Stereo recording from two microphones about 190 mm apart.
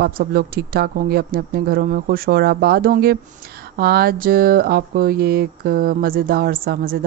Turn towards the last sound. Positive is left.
turn(degrees=-50)  # may be behind; listen again after turning